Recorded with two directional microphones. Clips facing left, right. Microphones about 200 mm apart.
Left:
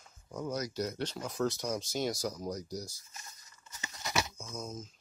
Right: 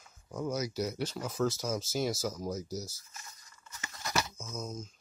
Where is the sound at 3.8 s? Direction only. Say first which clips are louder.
Even; 20° left (ahead or behind).